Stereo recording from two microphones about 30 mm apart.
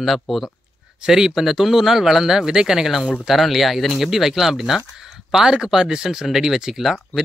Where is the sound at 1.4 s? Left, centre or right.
Centre.